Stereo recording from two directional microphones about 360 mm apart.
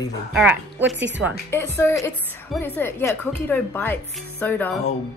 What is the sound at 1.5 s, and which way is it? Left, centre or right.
A woman's voice, centre.